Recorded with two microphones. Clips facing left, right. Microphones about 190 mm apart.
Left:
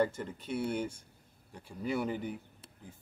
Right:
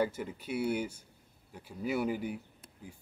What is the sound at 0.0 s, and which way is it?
A man's voice, 5° right (ahead or behind).